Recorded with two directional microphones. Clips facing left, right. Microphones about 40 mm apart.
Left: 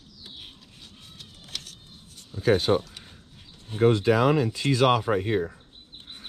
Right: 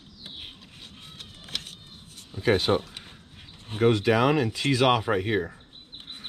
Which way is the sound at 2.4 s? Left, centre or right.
Right.